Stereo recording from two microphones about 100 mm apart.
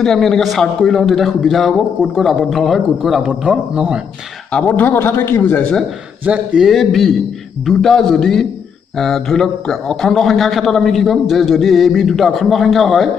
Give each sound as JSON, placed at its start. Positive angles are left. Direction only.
{"t": 0.0, "sound": "a man's voice", "side_deg": 5}
{"t": 4.5, "sound": "speech", "side_deg": 10}
{"t": 6.2, "sound": "a man's voice", "side_deg": -10}